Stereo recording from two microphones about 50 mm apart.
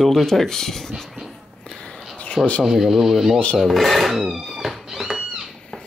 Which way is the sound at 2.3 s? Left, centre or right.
Left.